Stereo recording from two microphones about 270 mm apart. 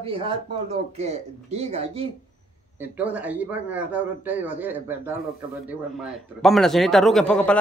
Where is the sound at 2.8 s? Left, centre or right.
Centre.